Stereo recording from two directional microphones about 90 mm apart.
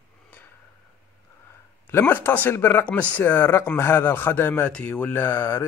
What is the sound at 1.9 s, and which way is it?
A man's voice, 25° left (ahead or behind).